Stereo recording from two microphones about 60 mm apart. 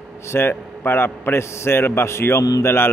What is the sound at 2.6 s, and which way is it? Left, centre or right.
Music, left.